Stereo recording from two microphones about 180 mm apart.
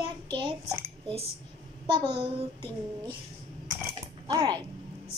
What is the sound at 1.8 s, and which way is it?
Speech, 25° right (ahead or behind).